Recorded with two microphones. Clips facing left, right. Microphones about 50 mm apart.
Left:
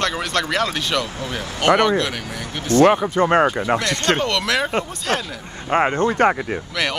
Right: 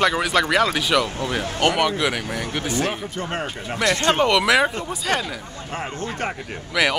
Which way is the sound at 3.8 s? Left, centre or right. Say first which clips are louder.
Right 2 dB; right.